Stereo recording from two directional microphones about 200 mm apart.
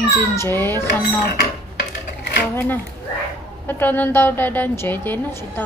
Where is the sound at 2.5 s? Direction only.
10° left (ahead or behind).